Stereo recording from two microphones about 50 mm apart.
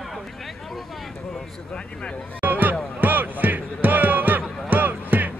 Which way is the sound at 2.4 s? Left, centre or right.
Right.